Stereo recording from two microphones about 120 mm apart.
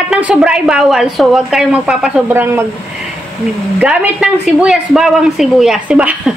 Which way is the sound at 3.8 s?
10° right (ahead or behind).